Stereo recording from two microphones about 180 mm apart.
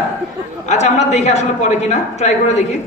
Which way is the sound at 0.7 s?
40° left (ahead or behind).